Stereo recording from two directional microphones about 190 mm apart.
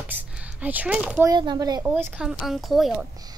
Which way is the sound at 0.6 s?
10° right (ahead or behind).